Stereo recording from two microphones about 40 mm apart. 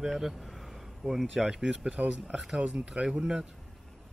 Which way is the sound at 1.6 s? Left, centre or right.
Centre.